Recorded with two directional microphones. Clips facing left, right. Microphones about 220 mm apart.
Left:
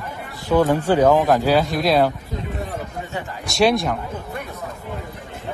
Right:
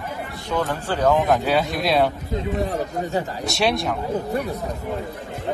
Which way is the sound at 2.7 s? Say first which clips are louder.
Right 5 dB; 40° right (ahead or behind).